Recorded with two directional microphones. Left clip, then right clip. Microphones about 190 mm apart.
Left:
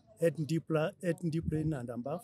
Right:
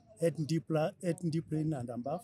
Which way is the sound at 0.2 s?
40° left (ahead or behind).